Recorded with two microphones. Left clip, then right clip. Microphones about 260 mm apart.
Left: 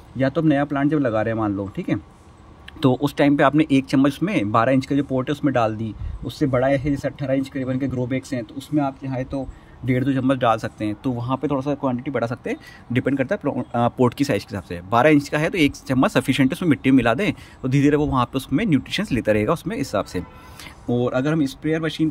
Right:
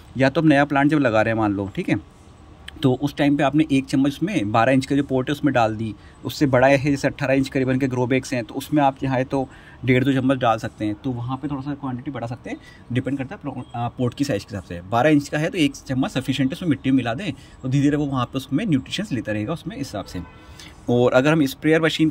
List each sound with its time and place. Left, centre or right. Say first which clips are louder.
0.2 s speech: right 3 dB; centre
20.8 s speech: right 5 dB; centre